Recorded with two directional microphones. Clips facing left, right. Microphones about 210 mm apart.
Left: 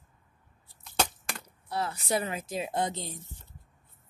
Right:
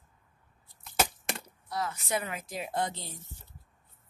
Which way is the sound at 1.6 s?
30° left (ahead or behind).